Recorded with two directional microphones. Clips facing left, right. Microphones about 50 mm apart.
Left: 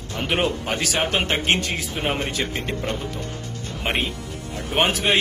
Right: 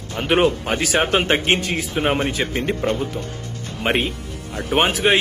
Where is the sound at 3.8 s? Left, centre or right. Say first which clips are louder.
Right 5 dB; centre.